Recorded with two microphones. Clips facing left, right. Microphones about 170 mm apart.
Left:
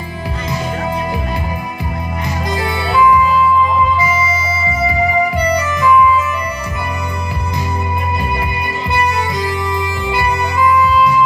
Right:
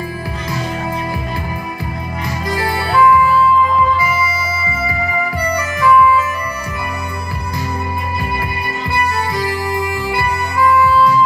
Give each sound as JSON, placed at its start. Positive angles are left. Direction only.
{"t": 2.5, "sound": "music", "side_deg": 20}
{"t": 5.8, "sound": "music", "side_deg": 20}
{"t": 10.0, "sound": "music", "side_deg": 20}